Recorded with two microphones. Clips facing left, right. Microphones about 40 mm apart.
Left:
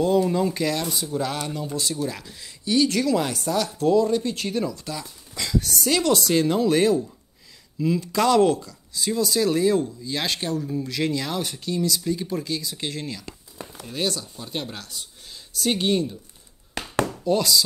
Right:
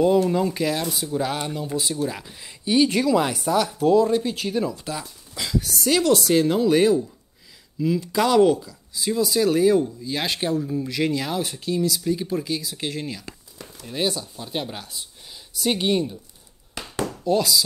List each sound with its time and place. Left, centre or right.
0.3 s speech: centre
5.3 s speech: centre
13.6 s speech: left
13.9 s speech: centre
17.0 s a sound: centre